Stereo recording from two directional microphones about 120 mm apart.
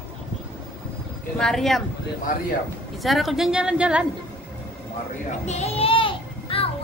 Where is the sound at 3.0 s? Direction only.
Centre (ahead or behind).